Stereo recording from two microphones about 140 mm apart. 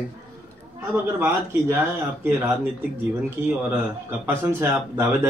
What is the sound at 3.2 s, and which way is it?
Speech, 10° right (ahead or behind).